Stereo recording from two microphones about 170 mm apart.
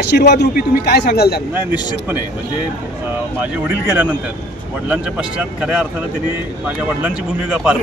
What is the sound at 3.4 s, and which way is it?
Speech, 10° right (ahead or behind).